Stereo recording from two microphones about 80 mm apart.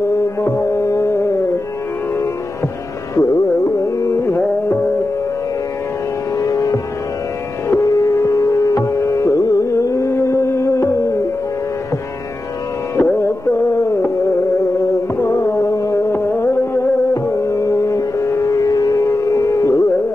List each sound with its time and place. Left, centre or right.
0.4 s music: left
3.2 s carnatic music: left
6.3 s music: left
12.9 s music: left
13.2 s a sound: left
15.1 s music: left
16.1 s music: left